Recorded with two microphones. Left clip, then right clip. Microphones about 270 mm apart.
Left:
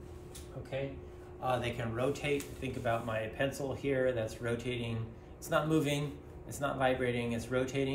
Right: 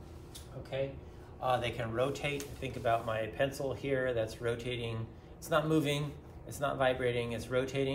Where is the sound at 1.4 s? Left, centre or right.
Centre.